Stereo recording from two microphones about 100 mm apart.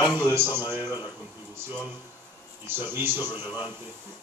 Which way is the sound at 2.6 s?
20° right (ahead or behind).